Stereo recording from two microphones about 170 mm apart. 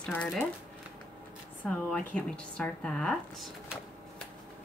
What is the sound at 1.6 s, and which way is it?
Speech, 10° left (ahead or behind).